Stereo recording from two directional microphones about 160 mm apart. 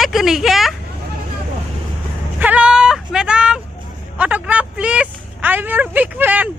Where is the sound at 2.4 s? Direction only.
5° right (ahead or behind).